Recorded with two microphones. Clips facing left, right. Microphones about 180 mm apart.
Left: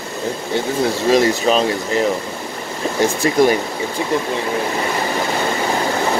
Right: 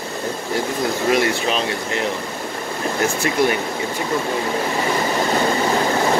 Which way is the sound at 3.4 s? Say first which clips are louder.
Left 5 dB; 45° left (ahead or behind).